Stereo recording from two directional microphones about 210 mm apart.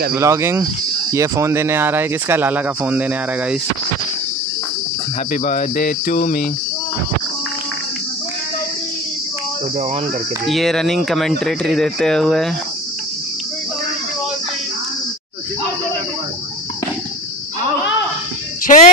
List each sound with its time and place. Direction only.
0.1 s speech: 15° right (ahead or behind)
5.3 s speech: 40° left (ahead or behind)
10.4 s speech: centre (ahead or behind)
18.7 s a sound: 40° left (ahead or behind)